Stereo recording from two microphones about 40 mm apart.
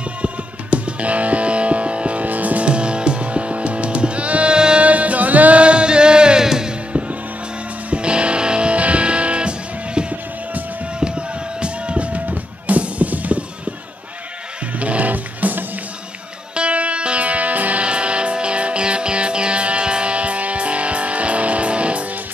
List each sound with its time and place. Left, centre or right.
0.2 s music: right
2.7 s music: right
4.6 s music: right
4.8 s music: right; by 6.7 s centre
6.9 s music: right
14.8 s music: right
16.5 s music: right
17.8 s music: right